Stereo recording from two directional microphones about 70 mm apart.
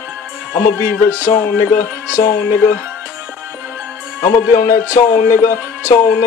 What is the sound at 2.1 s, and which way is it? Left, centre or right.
Speech, left.